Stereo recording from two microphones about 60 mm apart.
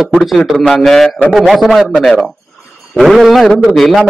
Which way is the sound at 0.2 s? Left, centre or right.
Centre.